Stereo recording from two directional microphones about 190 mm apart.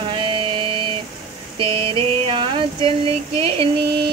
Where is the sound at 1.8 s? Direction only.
30° right (ahead or behind).